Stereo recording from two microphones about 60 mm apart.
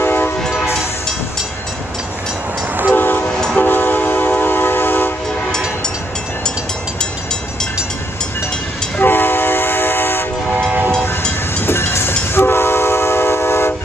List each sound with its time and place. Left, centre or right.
0.0 s train: left
2.9 s train: left
3.3 s train: centre
3.6 s train: left
9.0 s train: left
11.5 s train: left